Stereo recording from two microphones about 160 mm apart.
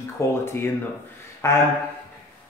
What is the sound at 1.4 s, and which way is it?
Speech, 15° left (ahead or behind).